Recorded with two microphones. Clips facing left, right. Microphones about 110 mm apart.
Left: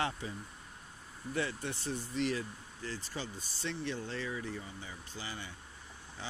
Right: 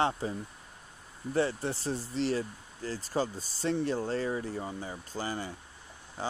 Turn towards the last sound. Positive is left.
turn(degrees=-40)  # may be behind; listen again after turning